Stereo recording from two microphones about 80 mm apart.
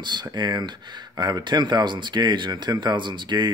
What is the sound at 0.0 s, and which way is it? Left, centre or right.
Speech, right.